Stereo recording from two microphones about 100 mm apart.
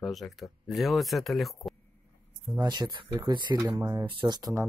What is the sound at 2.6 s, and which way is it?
Speech, 45° right (ahead or behind).